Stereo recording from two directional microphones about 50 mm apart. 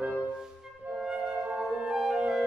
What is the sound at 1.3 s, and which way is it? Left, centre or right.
Flute, right.